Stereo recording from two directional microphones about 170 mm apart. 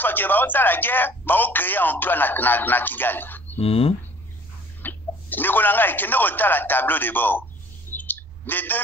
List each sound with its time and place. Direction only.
0.0 s a man's voice: 10° left (ahead or behind)
3.5 s speech: 35° left (ahead or behind)
4.8 s speech: 10° left (ahead or behind)
7.9 s a sound: 10° left (ahead or behind)